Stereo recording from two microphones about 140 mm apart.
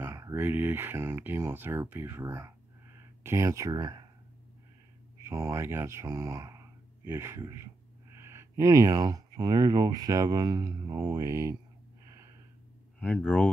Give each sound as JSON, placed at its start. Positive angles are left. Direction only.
{"t": 0.0, "sound": "speech", "side_deg": -20}
{"t": 5.2, "sound": "speech", "side_deg": -20}
{"t": 13.0, "sound": "speech", "side_deg": 10}